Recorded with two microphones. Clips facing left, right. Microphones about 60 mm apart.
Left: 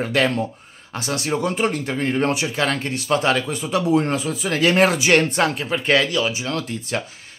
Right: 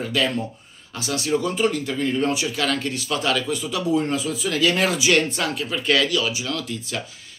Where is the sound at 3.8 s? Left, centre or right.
Left.